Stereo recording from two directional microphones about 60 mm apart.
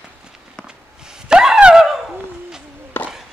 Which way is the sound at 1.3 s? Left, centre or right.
Centre.